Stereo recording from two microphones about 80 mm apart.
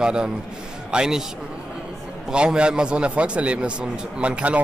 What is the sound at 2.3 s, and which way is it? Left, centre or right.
A man's voice, centre.